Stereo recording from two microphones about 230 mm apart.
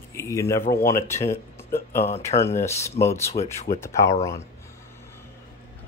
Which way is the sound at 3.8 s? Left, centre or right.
Centre.